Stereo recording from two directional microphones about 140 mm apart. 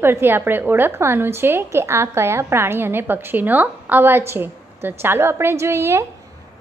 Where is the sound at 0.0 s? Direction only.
15° right (ahead or behind).